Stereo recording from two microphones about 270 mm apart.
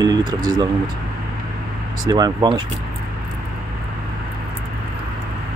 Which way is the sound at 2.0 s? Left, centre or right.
Centre.